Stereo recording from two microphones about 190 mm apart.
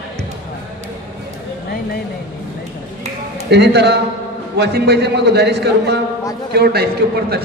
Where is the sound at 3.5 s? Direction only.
60° right (ahead or behind).